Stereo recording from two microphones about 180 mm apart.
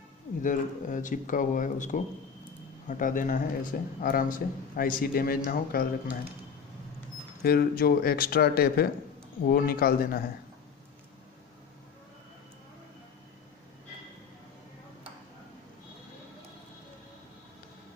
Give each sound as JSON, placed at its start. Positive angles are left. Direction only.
{"t": 0.4, "sound": "a man's voice", "side_deg": 45}
{"t": 7.4, "sound": "speech", "side_deg": 60}